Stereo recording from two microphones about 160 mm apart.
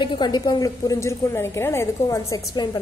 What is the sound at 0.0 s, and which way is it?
A woman's voice, 30° left (ahead or behind).